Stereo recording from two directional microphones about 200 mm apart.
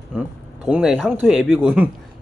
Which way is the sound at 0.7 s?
Centre (ahead or behind).